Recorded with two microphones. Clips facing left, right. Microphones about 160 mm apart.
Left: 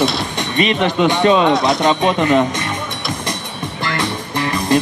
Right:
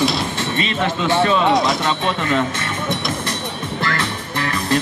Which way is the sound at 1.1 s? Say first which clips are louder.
Left 1 dB; 15° left (ahead or behind).